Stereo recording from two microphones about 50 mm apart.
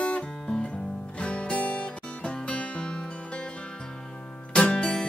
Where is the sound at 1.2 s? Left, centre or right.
Left.